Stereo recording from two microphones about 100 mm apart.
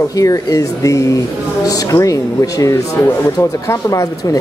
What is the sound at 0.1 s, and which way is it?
Speech, 35° left (ahead or behind).